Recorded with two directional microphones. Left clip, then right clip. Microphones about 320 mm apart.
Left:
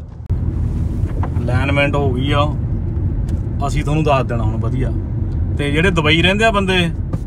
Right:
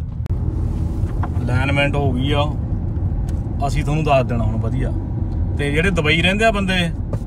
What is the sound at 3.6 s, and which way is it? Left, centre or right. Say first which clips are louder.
Speech: left 3 dB; centre.